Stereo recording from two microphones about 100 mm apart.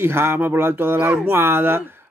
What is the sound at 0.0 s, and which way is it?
Speech, 25° right (ahead or behind).